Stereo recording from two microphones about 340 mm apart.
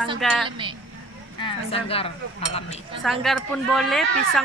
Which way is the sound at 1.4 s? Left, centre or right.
Centre.